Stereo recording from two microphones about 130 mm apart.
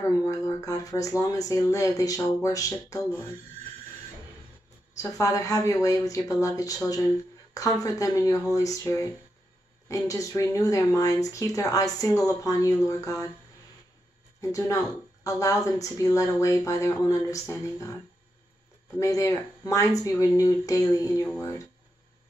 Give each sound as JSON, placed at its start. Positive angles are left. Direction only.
{"t": 0.2, "sound": "speech", "side_deg": 25}
{"t": 4.9, "sound": "speech", "side_deg": 25}
{"t": 14.4, "sound": "speech", "side_deg": 25}
{"t": 18.9, "sound": "speech", "side_deg": 25}